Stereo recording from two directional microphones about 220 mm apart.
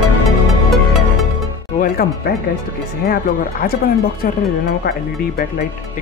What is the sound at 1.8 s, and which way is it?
Speech, 45° left (ahead or behind).